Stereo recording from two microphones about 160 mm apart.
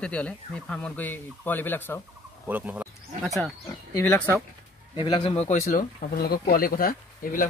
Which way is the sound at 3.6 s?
15° left (ahead or behind).